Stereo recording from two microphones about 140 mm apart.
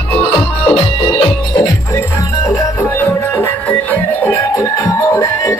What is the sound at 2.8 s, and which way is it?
Music, 20° left (ahead or behind).